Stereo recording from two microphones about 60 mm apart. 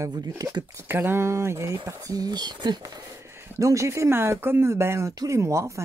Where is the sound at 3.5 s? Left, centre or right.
Right.